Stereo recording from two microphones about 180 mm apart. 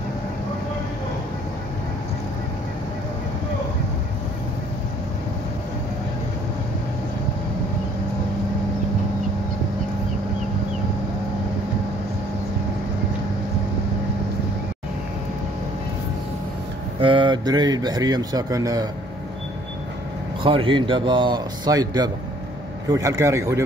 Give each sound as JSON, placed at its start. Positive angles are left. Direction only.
{"t": 17.0, "sound": "speech", "side_deg": -30}
{"t": 20.4, "sound": "speech", "side_deg": -30}